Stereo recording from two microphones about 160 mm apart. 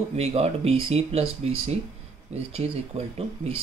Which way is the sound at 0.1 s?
40° right (ahead or behind).